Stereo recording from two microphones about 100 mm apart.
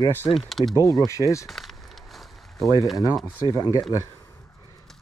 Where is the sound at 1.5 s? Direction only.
Centre (ahead or behind).